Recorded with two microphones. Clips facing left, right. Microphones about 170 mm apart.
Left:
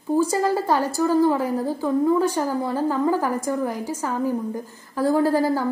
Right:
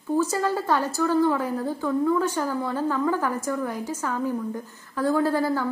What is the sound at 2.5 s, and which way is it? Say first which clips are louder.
Speech: left 3 dB; 35° left (ahead or behind).